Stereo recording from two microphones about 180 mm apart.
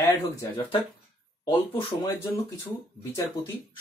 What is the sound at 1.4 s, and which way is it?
Speech, 30° left (ahead or behind).